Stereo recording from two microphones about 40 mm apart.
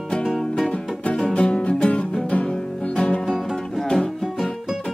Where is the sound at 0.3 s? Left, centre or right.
Centre.